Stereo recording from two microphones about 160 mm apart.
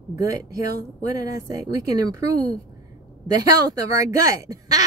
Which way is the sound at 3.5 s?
20° right (ahead or behind).